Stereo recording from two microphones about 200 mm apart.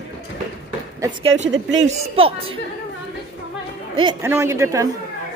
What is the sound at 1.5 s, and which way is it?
Speech, 70° right (ahead or behind).